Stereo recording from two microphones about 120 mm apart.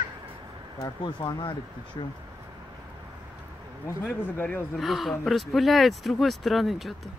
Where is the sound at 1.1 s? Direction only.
45° left (ahead or behind).